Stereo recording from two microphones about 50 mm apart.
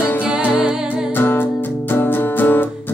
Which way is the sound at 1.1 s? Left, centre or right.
Left.